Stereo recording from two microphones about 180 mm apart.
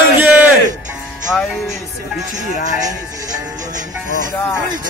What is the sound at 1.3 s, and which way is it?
Music, 10° left (ahead or behind).